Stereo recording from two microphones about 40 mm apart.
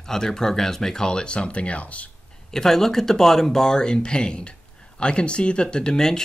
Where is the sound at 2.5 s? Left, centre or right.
Centre.